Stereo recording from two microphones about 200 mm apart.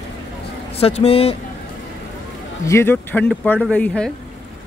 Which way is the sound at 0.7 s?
30° left (ahead or behind).